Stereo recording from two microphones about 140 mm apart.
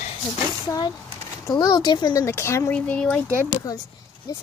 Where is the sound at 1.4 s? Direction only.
30° left (ahead or behind); by 3.2 s 10° left (ahead or behind).